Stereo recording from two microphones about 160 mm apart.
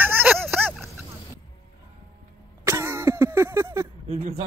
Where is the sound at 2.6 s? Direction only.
15° right (ahead or behind).